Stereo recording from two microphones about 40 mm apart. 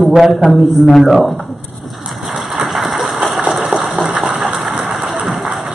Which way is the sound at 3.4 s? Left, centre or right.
Centre.